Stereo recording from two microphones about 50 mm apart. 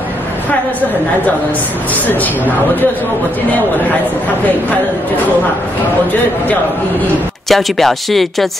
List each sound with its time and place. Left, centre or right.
2.0 s speech: left
7.4 s speech: centre